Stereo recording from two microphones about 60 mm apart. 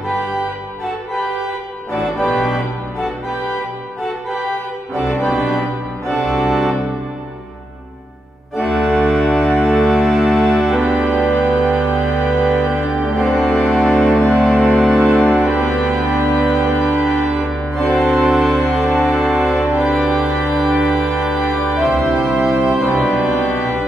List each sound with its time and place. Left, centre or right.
1.9 s music: centre
5.2 s music: centre
6.0 s organ: centre
8.5 s organ: centre
13.2 s music: centre
15.4 s music: centre
22.4 s music: right
22.8 s music: centre